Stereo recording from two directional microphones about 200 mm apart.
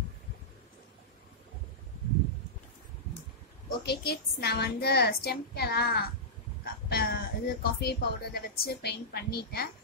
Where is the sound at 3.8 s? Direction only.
55° left (ahead or behind).